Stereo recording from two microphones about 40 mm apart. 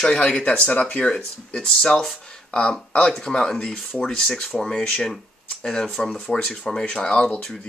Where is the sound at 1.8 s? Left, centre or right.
Centre.